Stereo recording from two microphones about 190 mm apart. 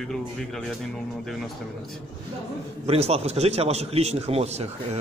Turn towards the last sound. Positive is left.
turn(degrees=-35)  # may be behind; listen again after turning